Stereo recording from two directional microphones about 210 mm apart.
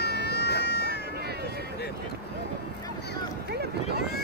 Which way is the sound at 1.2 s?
50° right (ahead or behind).